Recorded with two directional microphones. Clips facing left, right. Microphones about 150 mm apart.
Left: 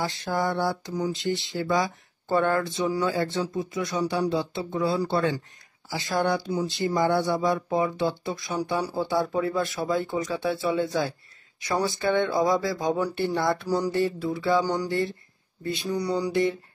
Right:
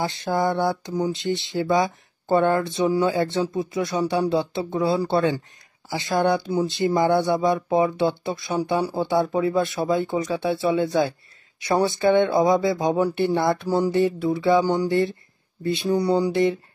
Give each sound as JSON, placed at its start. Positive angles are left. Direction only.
{"t": 0.0, "sound": "speech", "side_deg": -20}